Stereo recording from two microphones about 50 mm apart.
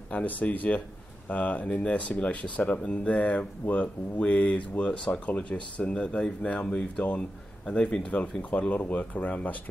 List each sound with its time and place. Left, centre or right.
0.1 s speech: left